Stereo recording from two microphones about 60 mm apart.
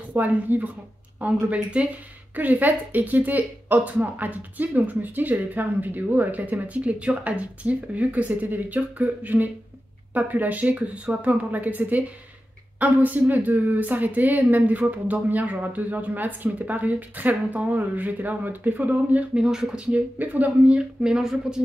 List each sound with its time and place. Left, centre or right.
0.1 s speech: right
19.3 s a woman's voice: centre
20.2 s a woman's voice: right; by 21.5 s centre